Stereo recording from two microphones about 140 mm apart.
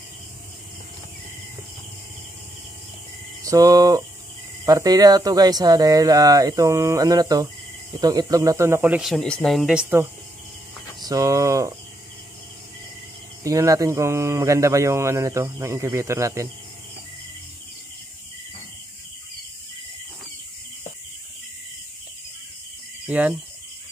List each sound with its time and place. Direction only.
3.4 s speech: 25° right (ahead or behind)
9.0 s speech: 5° left (ahead or behind)
11.0 s speech: 25° right (ahead or behind)
13.4 s speech: 25° right (ahead or behind)
23.0 s speech: 10° right (ahead or behind)